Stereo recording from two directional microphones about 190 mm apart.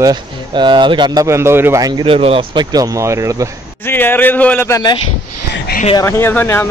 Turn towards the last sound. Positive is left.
turn(degrees=10)  # may be behind; listen again after turning